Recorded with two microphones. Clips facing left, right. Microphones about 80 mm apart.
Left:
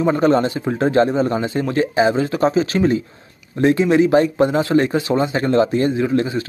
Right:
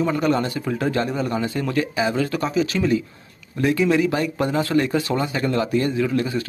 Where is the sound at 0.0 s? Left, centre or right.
Left.